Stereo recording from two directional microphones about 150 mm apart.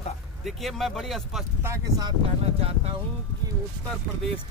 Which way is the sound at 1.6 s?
20° right (ahead or behind).